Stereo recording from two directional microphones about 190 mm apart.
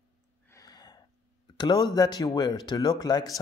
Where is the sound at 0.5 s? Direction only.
20° left (ahead or behind).